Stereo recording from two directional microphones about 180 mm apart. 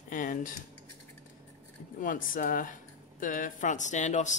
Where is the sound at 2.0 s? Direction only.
50° left (ahead or behind).